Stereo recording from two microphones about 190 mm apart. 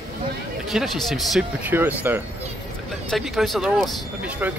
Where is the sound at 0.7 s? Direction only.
Centre (ahead or behind).